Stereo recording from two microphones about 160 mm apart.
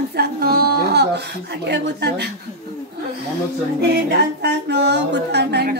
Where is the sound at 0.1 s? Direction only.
75° right (ahead or behind); by 2.2 s 90° right.